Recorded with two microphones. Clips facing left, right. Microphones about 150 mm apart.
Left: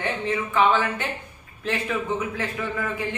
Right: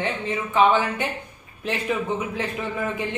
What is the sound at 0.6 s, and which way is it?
Speech, 15° right (ahead or behind).